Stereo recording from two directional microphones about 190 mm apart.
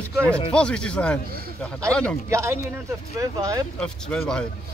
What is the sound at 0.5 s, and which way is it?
Speech, 5° left (ahead or behind).